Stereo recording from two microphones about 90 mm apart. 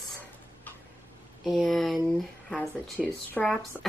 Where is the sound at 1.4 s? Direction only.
Centre (ahead or behind).